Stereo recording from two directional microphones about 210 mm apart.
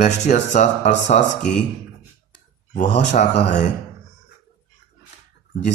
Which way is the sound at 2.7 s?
35° left (ahead or behind).